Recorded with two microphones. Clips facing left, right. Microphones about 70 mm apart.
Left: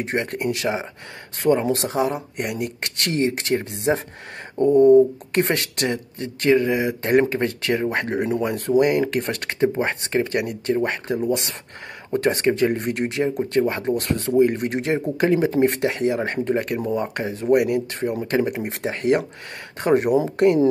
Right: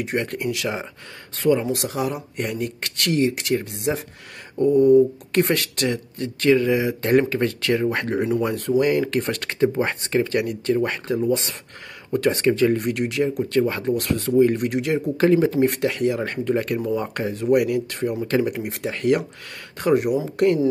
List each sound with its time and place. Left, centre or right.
0.0 s speech: left
1.4 s speech: left
15.1 s speech: centre
15.5 s speech: left